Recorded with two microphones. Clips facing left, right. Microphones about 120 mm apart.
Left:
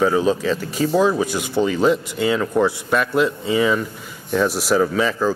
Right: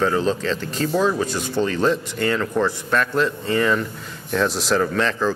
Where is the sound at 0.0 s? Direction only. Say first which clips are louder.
Left 3 dB; 10° left (ahead or behind).